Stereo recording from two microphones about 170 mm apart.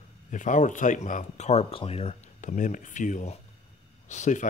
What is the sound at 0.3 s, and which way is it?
Speech, 50° left (ahead or behind).